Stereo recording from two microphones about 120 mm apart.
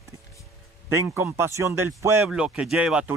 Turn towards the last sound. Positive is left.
turn(degrees=-5)  # may be behind; listen again after turning